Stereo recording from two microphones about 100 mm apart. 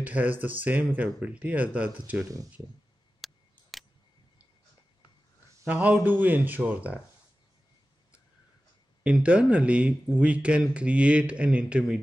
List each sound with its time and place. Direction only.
0.0 s speech: 15° right (ahead or behind)
3.2 s a sound: centre (ahead or behind)
5.7 s speech: 15° right (ahead or behind)
9.0 s speech: 10° right (ahead or behind)